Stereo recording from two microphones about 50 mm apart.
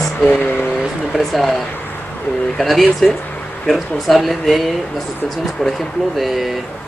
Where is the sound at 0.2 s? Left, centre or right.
Left.